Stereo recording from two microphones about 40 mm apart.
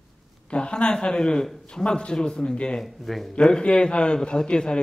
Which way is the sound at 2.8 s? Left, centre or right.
Centre.